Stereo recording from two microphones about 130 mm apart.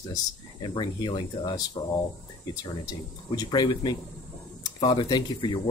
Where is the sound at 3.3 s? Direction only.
30° left (ahead or behind).